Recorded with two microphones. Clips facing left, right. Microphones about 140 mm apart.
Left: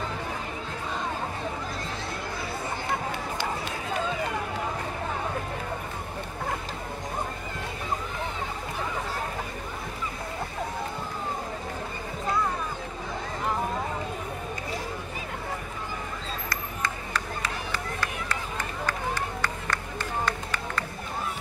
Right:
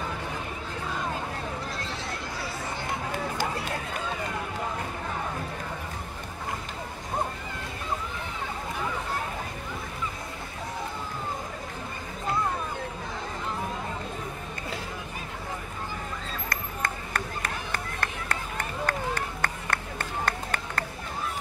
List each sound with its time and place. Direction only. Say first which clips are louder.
16.4 s run: right 1 dB; 55° right (ahead or behind)